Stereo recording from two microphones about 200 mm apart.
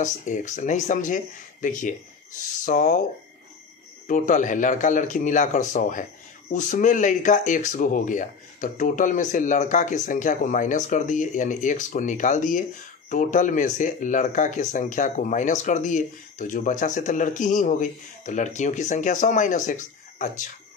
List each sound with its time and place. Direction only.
0.0 s speech: 40° left (ahead or behind)
4.1 s speech: 40° left (ahead or behind)